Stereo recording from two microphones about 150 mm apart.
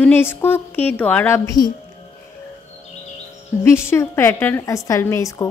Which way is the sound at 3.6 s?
15° left (ahead or behind).